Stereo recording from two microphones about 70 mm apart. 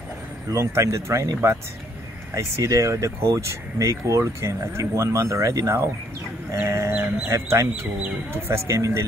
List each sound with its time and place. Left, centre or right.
0.5 s speech: right
1.2 s speech: right